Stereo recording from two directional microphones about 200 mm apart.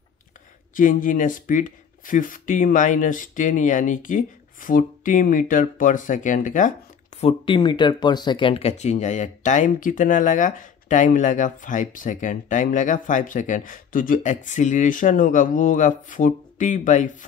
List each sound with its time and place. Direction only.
0.7 s speech: 40° left (ahead or behind)
7.2 s speech: 25° left (ahead or behind)